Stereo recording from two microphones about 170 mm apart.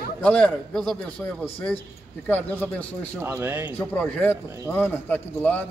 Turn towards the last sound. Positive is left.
turn(degrees=10)  # may be behind; listen again after turning